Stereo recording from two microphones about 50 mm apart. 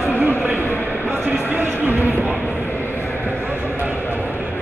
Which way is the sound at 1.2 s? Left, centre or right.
Right.